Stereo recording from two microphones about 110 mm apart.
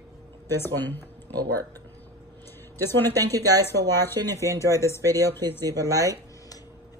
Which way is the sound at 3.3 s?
20° left (ahead or behind).